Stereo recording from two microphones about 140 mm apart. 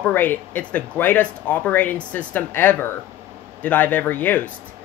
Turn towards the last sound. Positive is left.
turn(degrees=10)  # may be behind; listen again after turning